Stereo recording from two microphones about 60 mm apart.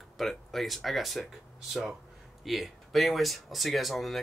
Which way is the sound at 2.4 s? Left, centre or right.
Centre.